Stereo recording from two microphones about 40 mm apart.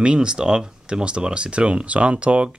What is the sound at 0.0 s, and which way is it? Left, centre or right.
Speech, right.